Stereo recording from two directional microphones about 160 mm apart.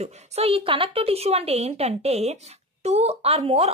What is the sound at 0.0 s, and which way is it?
Speech, 40° right (ahead or behind).